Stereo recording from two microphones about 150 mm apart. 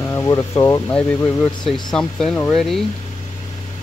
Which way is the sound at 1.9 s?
5° left (ahead or behind).